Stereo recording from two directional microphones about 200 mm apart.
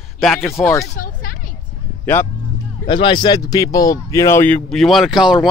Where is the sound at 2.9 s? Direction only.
25° left (ahead or behind); by 5.4 s centre (ahead or behind).